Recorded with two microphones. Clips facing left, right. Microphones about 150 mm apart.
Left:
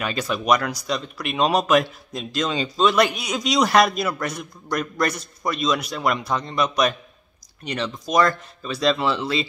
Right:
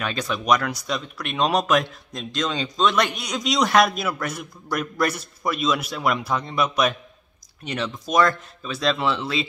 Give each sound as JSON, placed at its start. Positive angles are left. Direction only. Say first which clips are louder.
{"t": 0.0, "sound": "speech", "louder": "left 2 dB", "side_deg": 5}